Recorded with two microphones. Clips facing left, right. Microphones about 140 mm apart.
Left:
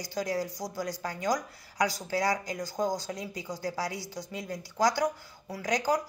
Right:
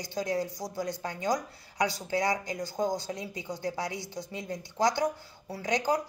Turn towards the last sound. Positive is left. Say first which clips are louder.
# even
turn(degrees=-25)  # may be behind; listen again after turning